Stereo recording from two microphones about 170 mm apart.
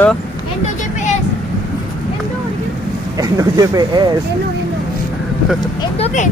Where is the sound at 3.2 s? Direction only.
20° right (ahead or behind).